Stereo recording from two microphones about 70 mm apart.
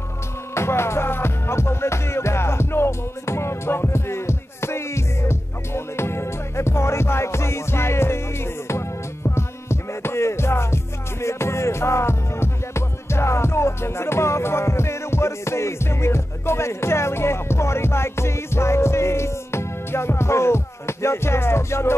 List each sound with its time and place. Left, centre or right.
0.6 s music: left